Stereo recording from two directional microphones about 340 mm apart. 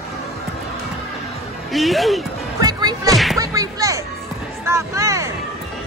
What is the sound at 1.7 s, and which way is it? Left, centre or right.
Speech, centre.